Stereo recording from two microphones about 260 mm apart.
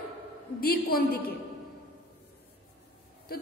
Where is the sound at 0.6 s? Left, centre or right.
Left.